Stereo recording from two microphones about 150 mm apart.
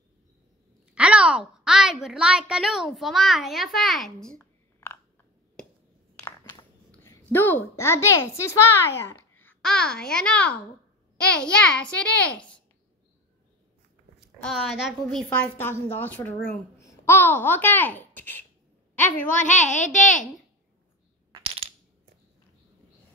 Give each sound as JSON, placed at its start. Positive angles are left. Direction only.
{"t": 0.9, "sound": "a woman's voice", "side_deg": -10}
{"t": 4.4, "sound": "a sound", "side_deg": 20}
{"t": 6.9, "sound": "a woman's voice", "side_deg": 15}
{"t": 14.4, "sound": "a woman's voice", "side_deg": 0}
{"t": 19.0, "sound": "a woman's voice", "side_deg": 55}
{"t": 21.3, "sound": "coin", "side_deg": -40}